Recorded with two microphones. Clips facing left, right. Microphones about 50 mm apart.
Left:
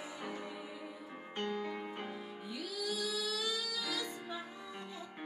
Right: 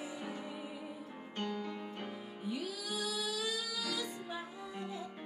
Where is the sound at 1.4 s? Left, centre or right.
Centre.